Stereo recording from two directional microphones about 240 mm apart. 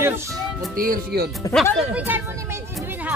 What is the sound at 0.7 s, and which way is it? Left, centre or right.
Speech, right.